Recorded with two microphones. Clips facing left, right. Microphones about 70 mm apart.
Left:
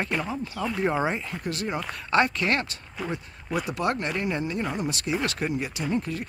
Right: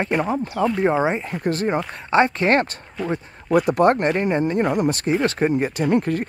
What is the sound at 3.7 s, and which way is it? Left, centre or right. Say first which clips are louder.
Speech: right 9 dB; right.